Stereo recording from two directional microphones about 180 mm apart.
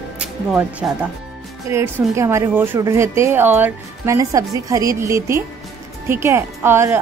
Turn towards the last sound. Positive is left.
turn(degrees=-15)  # may be behind; listen again after turning